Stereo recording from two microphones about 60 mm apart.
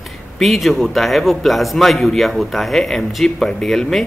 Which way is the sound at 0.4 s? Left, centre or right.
Centre.